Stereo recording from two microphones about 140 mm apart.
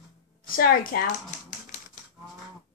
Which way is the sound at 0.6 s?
90° left.